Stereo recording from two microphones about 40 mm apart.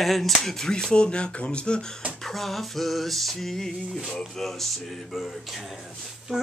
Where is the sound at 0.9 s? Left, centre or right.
Left.